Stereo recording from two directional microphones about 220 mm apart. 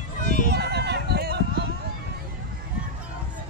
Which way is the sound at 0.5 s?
50° right (ahead or behind).